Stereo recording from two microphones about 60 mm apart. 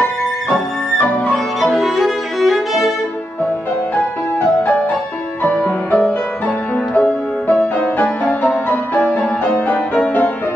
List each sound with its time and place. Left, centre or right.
1.2 s violin: centre
5.4 s music: left
9.8 s music: centre